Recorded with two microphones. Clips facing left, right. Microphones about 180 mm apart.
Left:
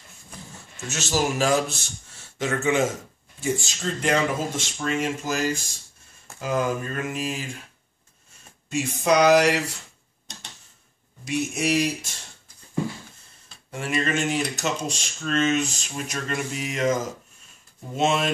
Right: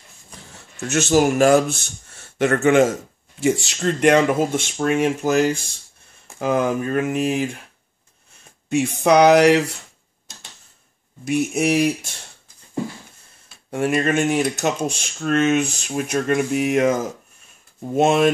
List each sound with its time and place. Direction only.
0.8 s speech: 55° right (ahead or behind)
3.3 s speech: 75° right (ahead or behind); by 7.4 s 55° right (ahead or behind)
8.6 s speech: 60° right (ahead or behind)
11.2 s speech: 55° right (ahead or behind)
13.7 s speech: 50° right (ahead or behind)
17.9 s speech: 55° right (ahead or behind)